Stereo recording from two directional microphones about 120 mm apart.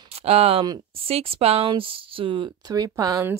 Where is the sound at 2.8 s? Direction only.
30° right (ahead or behind).